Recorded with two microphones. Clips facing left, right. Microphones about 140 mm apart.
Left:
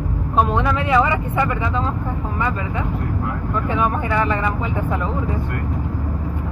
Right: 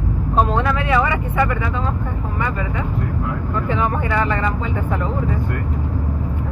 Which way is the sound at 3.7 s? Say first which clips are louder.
Even; 15° left (ahead or behind).